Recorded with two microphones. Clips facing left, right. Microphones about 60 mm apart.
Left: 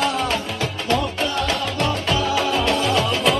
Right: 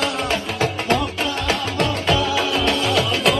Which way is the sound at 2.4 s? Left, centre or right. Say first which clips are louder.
Even; right.